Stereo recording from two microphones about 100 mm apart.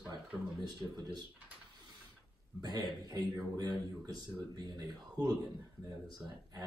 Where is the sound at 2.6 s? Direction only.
45° right (ahead or behind).